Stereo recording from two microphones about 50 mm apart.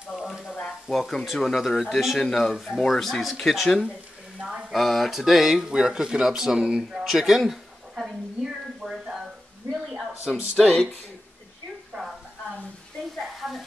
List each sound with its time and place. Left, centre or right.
0.1 s frying: centre
0.7 s stir: centre
1.2 s speech: centre
2.1 s speech: centre
2.5 s speech: centre
2.8 s speech: centre
4.4 s a sound: centre
4.7 s speech: centre
7.1 s a sound: centre
10.6 s speech: centre
13.4 s frying: centre